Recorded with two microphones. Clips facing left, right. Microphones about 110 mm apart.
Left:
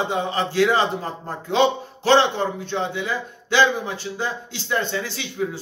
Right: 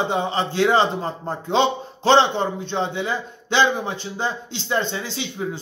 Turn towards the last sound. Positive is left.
turn(degrees=-25)  # may be behind; listen again after turning